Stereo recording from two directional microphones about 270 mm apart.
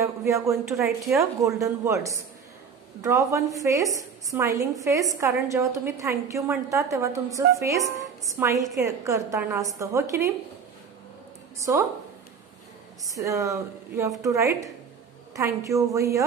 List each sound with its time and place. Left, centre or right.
0.0 s a sound: centre
0.7 s a woman's voice: centre
13.0 s a woman's voice: centre